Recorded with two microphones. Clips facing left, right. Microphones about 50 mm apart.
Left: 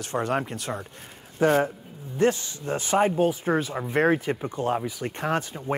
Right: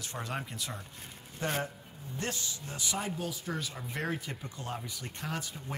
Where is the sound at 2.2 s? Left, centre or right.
Left.